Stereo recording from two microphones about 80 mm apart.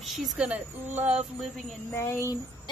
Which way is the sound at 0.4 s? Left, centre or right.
Centre.